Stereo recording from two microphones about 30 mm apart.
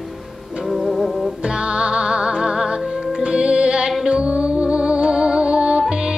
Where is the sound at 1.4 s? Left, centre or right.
Right.